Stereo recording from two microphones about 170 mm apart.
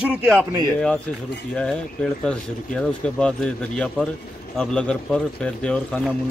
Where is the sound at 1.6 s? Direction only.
5° left (ahead or behind).